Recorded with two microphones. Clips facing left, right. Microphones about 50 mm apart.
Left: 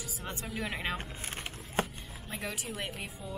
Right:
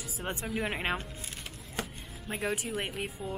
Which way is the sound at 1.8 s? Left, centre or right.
Left.